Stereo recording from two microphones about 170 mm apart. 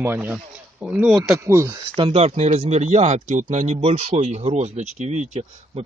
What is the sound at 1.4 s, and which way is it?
Speech, 15° right (ahead or behind).